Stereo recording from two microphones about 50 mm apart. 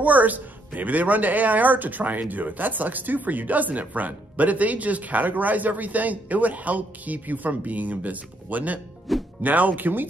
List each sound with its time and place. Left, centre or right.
0.0 s speech: right